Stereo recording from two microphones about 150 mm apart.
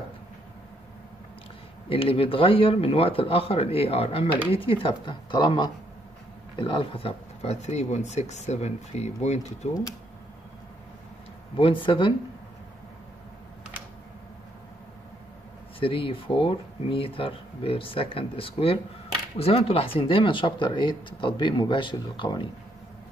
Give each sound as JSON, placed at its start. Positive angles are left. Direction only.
{"t": 1.9, "sound": "speech", "side_deg": 35}
{"t": 11.5, "sound": "speech", "side_deg": 35}
{"t": 15.8, "sound": "speech", "side_deg": 35}